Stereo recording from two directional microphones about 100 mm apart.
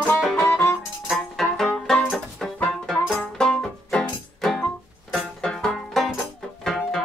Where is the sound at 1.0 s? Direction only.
Centre (ahead or behind).